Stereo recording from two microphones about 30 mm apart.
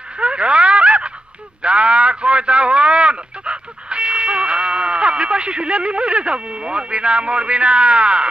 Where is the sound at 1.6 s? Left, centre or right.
Right.